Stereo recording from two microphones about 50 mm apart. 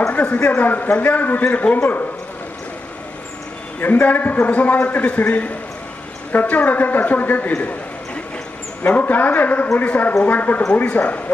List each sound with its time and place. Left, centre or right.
0.1 s a man's voice: left
3.8 s a man's voice: left
8.8 s a man's voice: left